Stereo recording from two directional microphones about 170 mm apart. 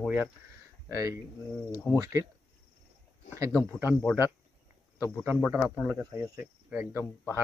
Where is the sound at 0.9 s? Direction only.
20° right (ahead or behind).